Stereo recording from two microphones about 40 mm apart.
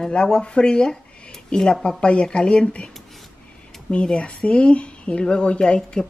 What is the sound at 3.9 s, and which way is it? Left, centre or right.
Speech, left.